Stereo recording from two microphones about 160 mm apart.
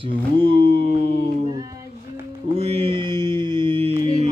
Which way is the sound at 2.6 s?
40° right (ahead or behind).